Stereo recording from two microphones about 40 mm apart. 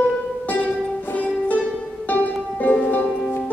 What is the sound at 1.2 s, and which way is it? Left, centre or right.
Music, left.